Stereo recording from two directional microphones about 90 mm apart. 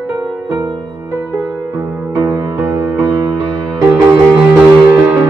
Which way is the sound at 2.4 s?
30° right (ahead or behind).